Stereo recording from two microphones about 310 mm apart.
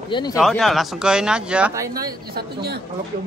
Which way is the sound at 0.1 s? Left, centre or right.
Centre.